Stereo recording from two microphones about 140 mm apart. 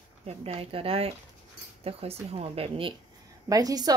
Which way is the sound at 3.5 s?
25° right (ahead or behind).